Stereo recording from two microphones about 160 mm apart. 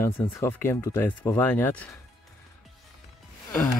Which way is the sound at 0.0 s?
15° left (ahead or behind).